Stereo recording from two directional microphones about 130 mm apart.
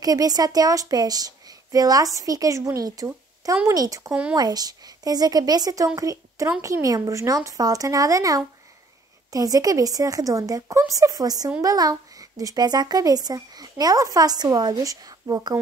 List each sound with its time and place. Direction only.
0.0 s a child's voice: 30° right (ahead or behind)
4.1 s speech: 10° right (ahead or behind)
4.4 s a child's voice: 30° right (ahead or behind)